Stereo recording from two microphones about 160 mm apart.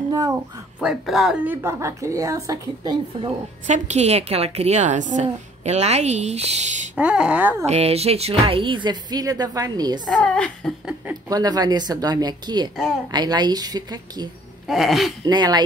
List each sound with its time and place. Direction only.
0.1 s speech: 25° right (ahead or behind)
0.7 s a woman's voice: 5° right (ahead or behind); by 3.3 s 25° right (ahead or behind)
3.6 s a woman's voice: 45° right (ahead or behind)
7.0 s speech: 5° right (ahead or behind)
7.6 s speech: 40° right (ahead or behind); by 10.0 s 25° right (ahead or behind)
10.0 s a woman's voice: 5° left (ahead or behind)
11.2 s a woman's voice: 25° right (ahead or behind)
14.7 s a woman's voice: centre (ahead or behind)
15.2 s a woman's voice: 25° right (ahead or behind)